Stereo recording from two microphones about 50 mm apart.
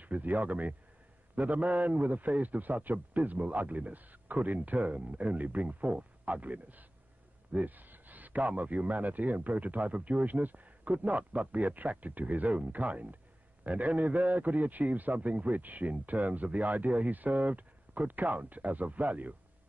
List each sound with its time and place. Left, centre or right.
0.0 s a man's voice: right